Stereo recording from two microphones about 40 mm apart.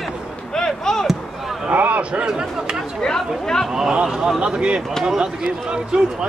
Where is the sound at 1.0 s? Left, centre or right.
Centre.